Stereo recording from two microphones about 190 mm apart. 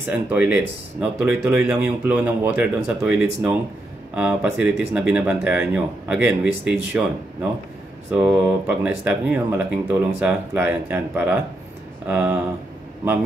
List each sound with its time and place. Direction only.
0.1 s speech: 5° right (ahead or behind)
8.1 s speech: 5° right (ahead or behind)